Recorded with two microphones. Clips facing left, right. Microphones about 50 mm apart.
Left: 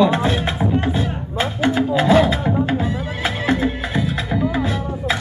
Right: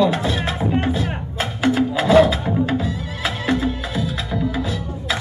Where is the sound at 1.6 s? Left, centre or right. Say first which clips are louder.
Even; centre.